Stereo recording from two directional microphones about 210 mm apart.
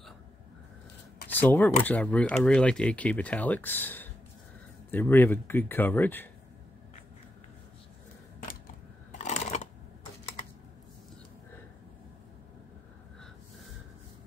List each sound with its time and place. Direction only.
1.3 s speech: 10° left (ahead or behind)
9.2 s scissors: 30° left (ahead or behind)